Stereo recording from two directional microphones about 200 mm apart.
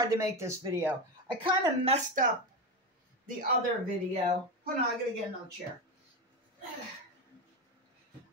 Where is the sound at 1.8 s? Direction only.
35° right (ahead or behind).